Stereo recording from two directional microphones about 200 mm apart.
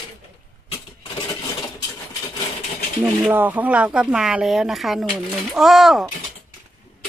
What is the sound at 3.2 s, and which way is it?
Speech, 10° right (ahead or behind).